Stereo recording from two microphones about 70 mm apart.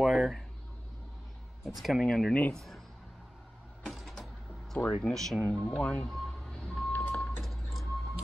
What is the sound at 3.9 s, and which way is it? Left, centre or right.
Mechanisms, centre.